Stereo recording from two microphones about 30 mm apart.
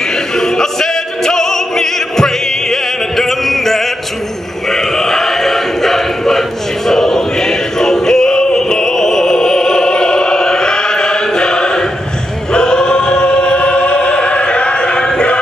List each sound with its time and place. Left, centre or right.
0.4 s music: centre
4.6 s a sound: centre
6.9 s choir: centre